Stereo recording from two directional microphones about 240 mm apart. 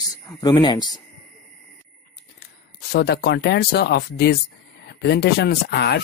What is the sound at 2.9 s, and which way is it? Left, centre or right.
Speech, left.